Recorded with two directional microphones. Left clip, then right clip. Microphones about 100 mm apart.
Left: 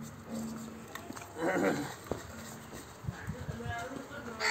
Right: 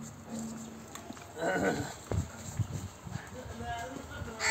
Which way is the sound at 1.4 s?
15° right (ahead or behind).